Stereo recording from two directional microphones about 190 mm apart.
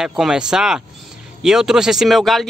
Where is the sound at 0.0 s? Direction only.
Centre (ahead or behind).